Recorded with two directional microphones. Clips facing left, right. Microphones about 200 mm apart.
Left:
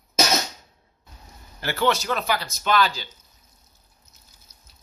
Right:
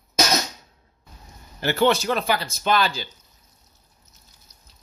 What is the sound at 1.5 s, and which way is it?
A man's voice, 25° right (ahead or behind).